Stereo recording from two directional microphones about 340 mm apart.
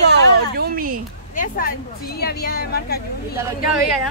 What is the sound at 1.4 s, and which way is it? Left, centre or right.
A woman's voice, left.